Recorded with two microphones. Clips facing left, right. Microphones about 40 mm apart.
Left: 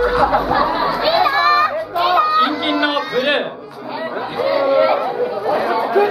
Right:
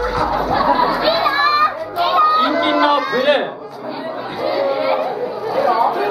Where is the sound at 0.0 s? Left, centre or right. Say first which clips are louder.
Left 3 dB; left.